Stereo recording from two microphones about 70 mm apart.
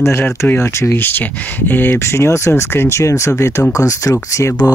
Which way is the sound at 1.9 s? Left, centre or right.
Left.